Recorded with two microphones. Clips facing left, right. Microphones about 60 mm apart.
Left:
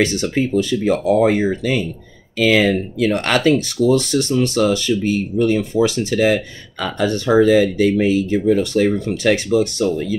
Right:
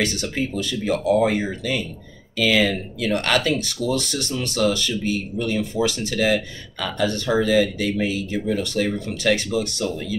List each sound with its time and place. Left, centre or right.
0.6 s speech: left